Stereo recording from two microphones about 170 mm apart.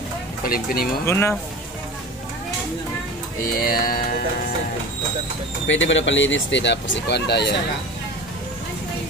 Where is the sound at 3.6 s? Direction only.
60° left (ahead or behind).